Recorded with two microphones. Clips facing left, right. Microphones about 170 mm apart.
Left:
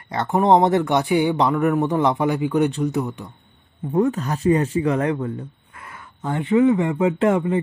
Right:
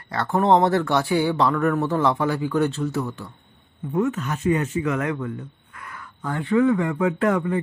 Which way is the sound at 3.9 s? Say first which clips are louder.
Left 3 dB; 35° left (ahead or behind).